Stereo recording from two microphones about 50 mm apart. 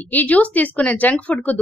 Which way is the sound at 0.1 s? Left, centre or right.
Left.